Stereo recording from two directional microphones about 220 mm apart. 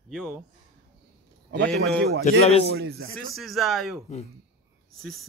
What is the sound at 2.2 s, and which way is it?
Speech, 30° left (ahead or behind).